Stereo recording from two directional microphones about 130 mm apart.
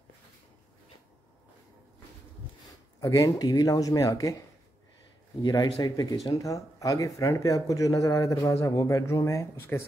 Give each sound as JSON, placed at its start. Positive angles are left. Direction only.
{"t": 3.0, "sound": "speech", "side_deg": 25}
{"t": 5.4, "sound": "speech", "side_deg": 25}